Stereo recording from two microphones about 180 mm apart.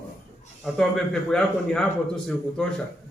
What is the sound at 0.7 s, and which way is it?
A man's voice, centre (ahead or behind).